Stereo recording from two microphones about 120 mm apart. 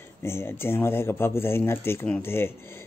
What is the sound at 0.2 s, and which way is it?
A man's voice, 20° left (ahead or behind).